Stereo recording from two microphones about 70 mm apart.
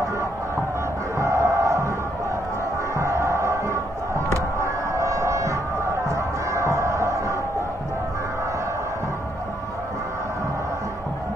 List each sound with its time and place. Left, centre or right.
1.1 s chant: right
3.0 s crowd: right